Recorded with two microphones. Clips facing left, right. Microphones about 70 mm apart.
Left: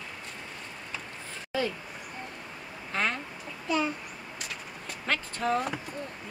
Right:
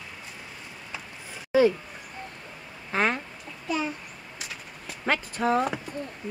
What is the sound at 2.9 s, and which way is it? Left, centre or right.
Chicken, centre.